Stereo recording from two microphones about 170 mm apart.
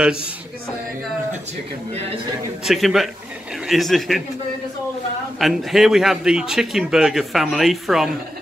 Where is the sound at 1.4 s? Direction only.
40° right (ahead or behind).